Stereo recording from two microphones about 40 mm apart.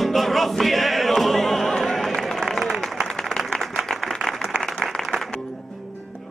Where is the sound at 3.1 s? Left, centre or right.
Centre.